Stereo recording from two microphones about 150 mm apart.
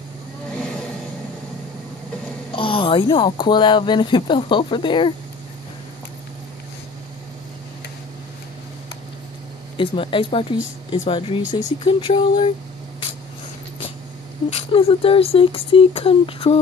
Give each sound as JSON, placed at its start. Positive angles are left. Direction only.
{"t": 2.5, "sound": "speech", "side_deg": 35}
{"t": 9.8, "sound": "speech", "side_deg": 35}
{"t": 14.5, "sound": "speech", "side_deg": 40}